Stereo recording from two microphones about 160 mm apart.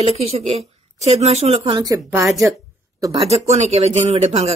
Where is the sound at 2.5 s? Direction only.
20° right (ahead or behind).